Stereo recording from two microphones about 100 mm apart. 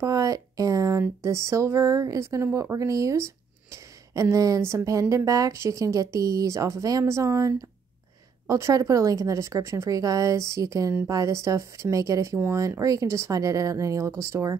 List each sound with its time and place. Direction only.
0.0 s speech: 35° right (ahead or behind)